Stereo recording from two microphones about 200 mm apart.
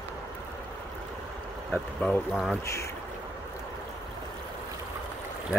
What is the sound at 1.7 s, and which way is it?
Speech, 15° left (ahead or behind).